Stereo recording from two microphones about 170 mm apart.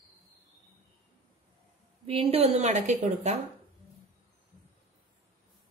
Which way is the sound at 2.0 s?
35° right (ahead or behind).